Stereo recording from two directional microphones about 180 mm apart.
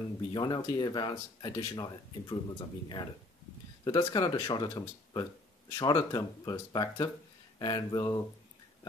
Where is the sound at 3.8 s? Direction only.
25° left (ahead or behind).